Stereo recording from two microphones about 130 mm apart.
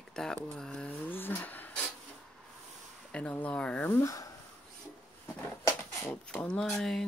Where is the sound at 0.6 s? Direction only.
5° left (ahead or behind).